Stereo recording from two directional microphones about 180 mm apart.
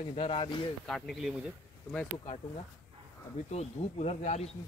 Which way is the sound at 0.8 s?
Centre (ahead or behind).